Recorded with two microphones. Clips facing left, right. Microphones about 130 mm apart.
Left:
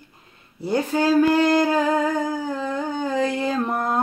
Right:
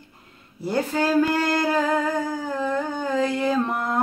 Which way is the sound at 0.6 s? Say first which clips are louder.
Left 2 dB; 15° left (ahead or behind).